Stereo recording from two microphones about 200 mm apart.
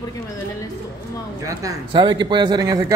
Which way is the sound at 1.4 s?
20° right (ahead or behind).